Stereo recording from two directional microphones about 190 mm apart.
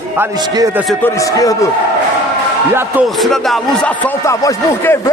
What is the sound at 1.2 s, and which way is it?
Speech, 20° left (ahead or behind).